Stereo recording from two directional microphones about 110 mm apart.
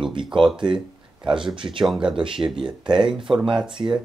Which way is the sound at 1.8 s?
5° right (ahead or behind).